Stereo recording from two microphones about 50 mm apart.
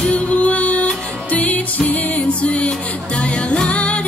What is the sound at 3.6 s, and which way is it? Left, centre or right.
Music, left.